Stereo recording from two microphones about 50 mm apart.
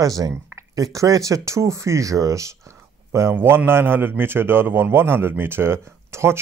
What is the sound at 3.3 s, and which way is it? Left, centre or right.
A man's voice, right.